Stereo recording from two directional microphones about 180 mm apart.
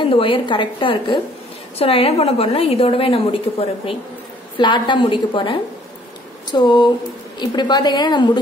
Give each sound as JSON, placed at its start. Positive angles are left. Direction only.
{"t": 0.0, "sound": "a woman's voice", "side_deg": 30}